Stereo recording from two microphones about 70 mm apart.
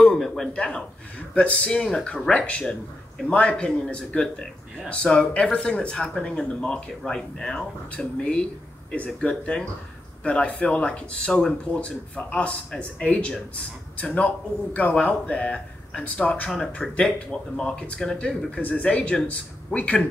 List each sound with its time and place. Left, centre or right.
0.0 s a sound: centre
0.5 s speech: centre
9.3 s speech: centre